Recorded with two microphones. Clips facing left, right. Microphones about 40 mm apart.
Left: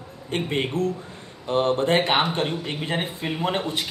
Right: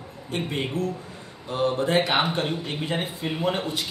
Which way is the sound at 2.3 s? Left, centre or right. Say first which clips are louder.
Left 1 dB; centre.